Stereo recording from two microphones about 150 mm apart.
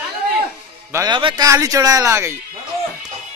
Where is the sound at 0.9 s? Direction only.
30° right (ahead or behind).